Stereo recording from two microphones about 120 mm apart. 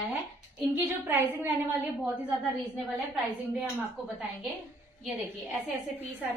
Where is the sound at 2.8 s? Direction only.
Centre (ahead or behind).